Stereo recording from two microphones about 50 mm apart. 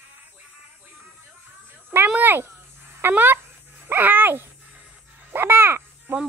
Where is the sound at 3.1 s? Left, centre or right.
Right.